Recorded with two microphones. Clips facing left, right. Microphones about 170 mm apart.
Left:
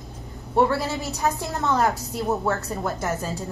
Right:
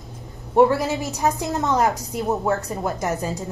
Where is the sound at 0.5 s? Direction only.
15° right (ahead or behind).